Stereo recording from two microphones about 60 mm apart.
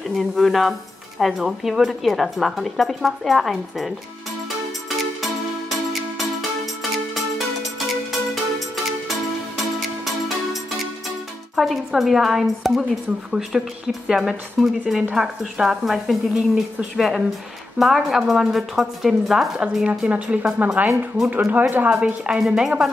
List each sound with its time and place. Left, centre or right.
0.4 s speech: centre
9.8 s music: centre
11.5 s speech: centre
19.8 s a woman's voice: centre
21.9 s speech: centre